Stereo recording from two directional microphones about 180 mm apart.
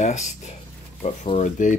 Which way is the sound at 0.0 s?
40° left (ahead or behind).